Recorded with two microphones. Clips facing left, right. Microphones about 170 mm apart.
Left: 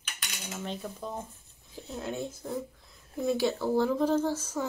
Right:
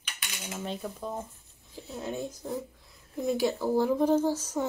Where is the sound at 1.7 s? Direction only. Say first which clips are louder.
Even; 5° right (ahead or behind).